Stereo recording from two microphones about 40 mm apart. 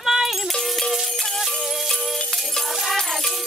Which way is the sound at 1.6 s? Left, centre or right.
Centre.